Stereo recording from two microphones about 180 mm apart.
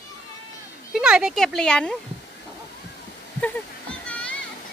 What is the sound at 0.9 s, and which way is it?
Speech, 5° right (ahead or behind).